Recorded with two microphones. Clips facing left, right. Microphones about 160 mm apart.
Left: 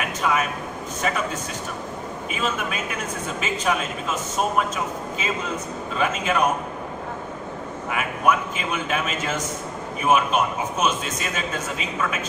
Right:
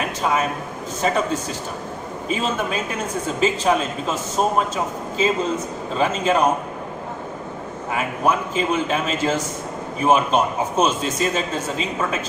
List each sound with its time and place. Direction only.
0.2 s a man's voice: 30° right (ahead or behind)
2.2 s a man's voice: 30° right (ahead or behind)
7.9 s a man's voice: 30° right (ahead or behind)